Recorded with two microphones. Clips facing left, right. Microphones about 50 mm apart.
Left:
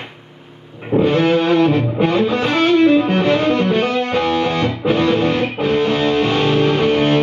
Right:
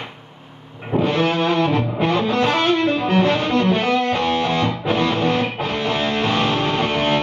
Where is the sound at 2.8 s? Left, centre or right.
Left.